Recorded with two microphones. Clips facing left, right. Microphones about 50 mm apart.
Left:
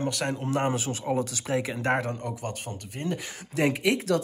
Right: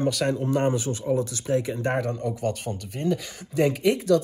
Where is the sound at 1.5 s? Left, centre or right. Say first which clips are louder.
Right 4 dB; left.